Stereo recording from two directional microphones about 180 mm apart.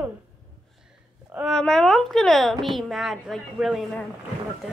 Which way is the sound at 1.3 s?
Centre (ahead or behind).